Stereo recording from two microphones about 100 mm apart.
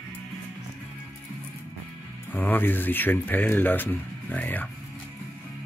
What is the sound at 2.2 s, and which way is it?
Speech, 20° left (ahead or behind).